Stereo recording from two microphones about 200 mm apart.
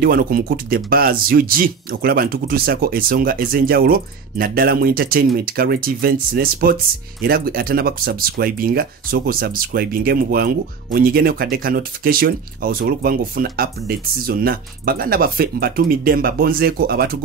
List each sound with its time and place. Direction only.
0.0 s speech: 50° right (ahead or behind)